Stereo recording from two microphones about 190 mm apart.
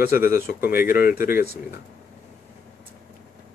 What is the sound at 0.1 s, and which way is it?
Speech, 50° left (ahead or behind).